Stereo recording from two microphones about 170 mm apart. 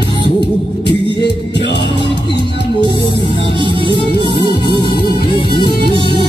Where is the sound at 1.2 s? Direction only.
90° left.